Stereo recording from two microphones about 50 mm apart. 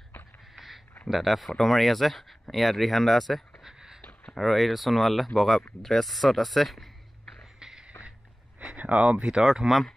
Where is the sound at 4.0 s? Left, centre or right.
Left.